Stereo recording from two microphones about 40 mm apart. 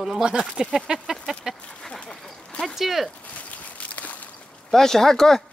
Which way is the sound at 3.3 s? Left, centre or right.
Left.